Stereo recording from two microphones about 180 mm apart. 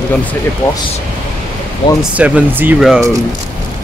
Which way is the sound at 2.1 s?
5° right (ahead or behind).